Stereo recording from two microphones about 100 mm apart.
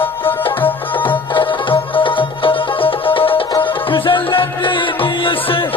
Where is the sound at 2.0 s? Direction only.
60° left (ahead or behind).